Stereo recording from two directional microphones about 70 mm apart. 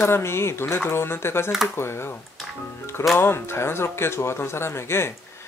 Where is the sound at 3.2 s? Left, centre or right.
Left.